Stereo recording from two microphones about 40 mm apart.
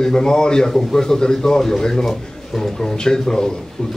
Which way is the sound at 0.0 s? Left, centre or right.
Centre.